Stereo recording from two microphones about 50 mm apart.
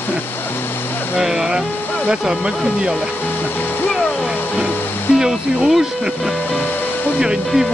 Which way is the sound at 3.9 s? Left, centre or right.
Centre.